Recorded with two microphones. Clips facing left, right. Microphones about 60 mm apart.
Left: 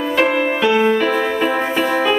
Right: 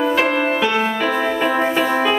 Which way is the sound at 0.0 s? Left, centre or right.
Centre.